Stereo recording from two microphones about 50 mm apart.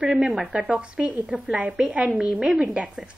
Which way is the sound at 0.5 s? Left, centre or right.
Right.